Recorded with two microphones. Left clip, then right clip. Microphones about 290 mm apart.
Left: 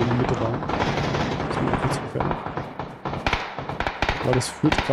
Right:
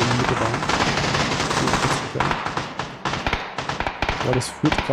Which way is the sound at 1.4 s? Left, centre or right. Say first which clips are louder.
Right 4 dB; right.